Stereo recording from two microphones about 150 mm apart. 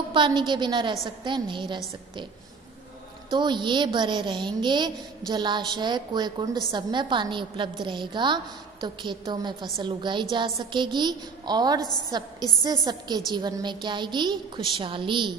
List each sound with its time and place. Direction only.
0.1 s a woman's voice: 35° right (ahead or behind)
3.3 s a woman's voice: 30° right (ahead or behind)